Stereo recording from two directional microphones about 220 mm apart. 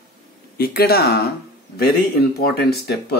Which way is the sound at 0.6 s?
45° left (ahead or behind).